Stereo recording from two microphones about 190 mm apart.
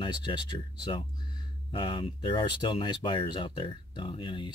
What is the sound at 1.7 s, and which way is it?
Speech, 25° left (ahead or behind).